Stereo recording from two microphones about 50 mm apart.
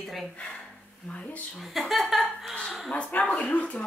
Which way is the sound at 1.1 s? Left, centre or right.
Left.